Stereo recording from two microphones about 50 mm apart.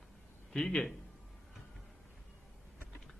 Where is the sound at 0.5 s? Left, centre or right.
Centre.